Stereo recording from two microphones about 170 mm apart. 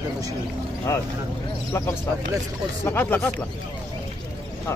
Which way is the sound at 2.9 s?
15° left (ahead or behind).